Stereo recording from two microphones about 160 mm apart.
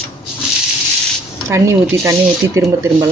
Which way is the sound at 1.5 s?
15° right (ahead or behind).